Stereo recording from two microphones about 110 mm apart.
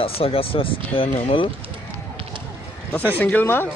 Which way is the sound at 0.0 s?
60° left (ahead or behind).